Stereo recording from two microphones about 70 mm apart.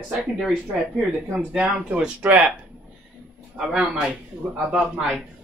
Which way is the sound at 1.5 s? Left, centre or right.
Centre.